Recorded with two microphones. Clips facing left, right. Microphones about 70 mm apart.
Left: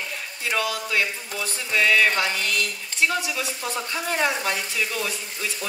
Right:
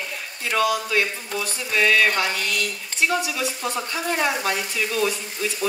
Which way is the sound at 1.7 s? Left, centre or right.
Centre.